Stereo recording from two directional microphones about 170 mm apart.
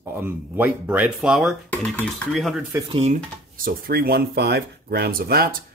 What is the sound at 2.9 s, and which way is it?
Speech, 40° right (ahead or behind).